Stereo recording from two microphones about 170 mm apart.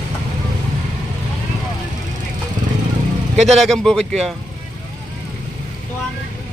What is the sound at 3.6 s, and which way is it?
Speech, centre (ahead or behind).